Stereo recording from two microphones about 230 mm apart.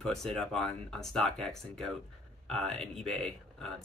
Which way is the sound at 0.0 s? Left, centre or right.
Centre.